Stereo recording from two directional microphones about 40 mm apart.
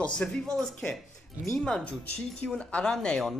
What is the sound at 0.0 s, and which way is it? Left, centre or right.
Speech, left.